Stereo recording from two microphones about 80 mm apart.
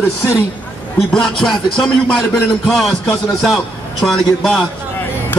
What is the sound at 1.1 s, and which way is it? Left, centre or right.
A man's voice, centre.